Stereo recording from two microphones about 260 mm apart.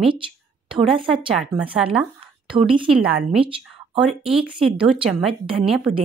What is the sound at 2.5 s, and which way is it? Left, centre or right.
Speech, centre.